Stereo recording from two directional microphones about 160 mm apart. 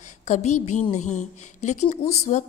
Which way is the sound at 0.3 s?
50° left (ahead or behind).